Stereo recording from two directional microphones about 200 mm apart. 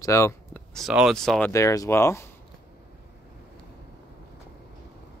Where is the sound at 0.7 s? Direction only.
Centre (ahead or behind).